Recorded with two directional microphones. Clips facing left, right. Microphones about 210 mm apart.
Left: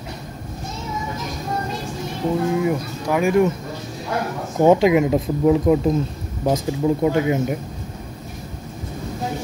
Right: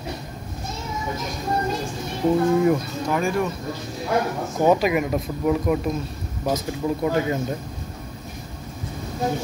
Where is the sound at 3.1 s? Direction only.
20° left (ahead or behind).